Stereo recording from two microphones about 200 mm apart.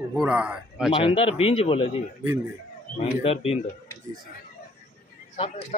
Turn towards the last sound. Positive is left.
turn(degrees=25)  # may be behind; listen again after turning